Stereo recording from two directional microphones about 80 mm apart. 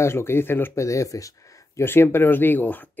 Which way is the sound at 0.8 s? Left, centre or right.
Left.